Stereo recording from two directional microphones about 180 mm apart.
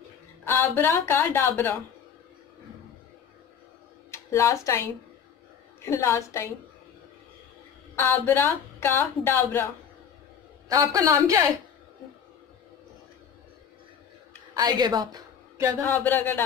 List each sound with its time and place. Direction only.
0.5 s speech: 10° left (ahead or behind)
4.1 s speech: 15° left (ahead or behind)
7.9 s speech: 10° left (ahead or behind)
10.7 s a man's voice: 20° right (ahead or behind)
14.5 s speech: 20° right (ahead or behind)
15.8 s speech: 10° left (ahead or behind)